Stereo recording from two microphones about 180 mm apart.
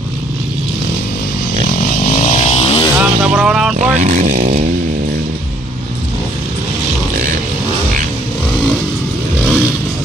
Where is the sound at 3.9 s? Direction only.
45° right (ahead or behind).